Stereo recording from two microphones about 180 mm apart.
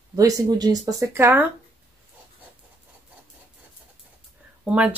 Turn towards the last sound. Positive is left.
turn(degrees=-5)  # may be behind; listen again after turning